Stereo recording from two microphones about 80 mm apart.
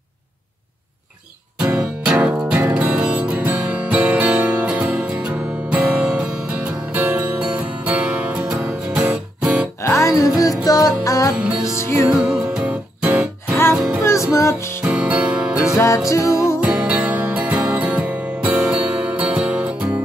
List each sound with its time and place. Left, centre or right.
2.1 s music: centre
9.8 s music: left
10.6 s music: left
12.1 s music: centre
14.3 s music: left
14.9 s music: centre
16.1 s music: left
16.6 s music: centre